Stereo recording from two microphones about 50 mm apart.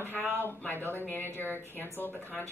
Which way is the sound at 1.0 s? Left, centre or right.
Left.